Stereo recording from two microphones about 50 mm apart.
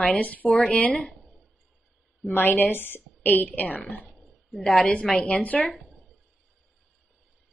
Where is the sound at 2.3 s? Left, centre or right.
Left.